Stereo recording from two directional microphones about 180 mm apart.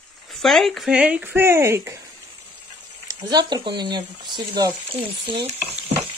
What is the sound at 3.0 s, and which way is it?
Speech, 20° right (ahead or behind).